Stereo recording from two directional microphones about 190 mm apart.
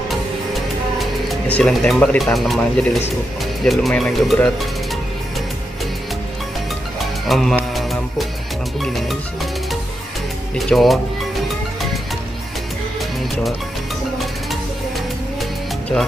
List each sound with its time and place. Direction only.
0.9 s speech: centre (ahead or behind)
7.2 s music: centre (ahead or behind)
10.7 s speech: centre (ahead or behind)